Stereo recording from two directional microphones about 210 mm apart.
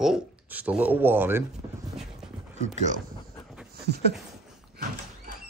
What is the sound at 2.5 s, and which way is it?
Speech, 35° right (ahead or behind).